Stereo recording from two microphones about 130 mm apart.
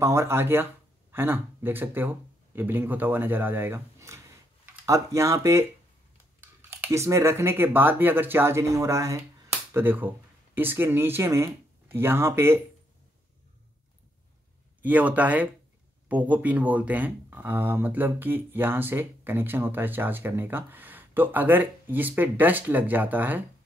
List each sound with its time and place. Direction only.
0.0 s speech: 20° right (ahead or behind)
14.8 s speech: 10° right (ahead or behind)